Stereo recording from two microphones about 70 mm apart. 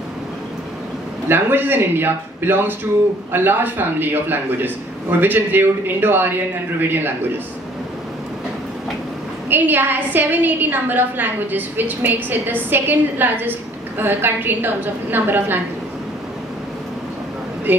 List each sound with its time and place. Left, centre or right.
1.3 s a woman's voice: right
9.5 s a woman's voice: right
17.7 s speech: right